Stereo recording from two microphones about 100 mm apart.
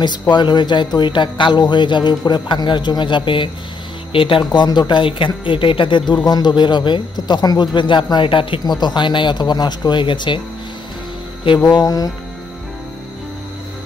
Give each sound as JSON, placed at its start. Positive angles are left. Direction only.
{"t": 0.3, "sound": "speech", "side_deg": 45}
{"t": 4.6, "sound": "speech", "side_deg": 45}
{"t": 11.8, "sound": "speech", "side_deg": 35}